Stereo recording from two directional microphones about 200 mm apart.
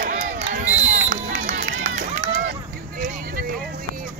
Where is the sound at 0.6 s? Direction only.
40° right (ahead or behind).